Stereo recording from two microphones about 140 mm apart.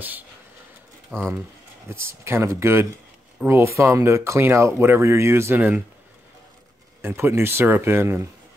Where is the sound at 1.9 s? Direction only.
20° right (ahead or behind).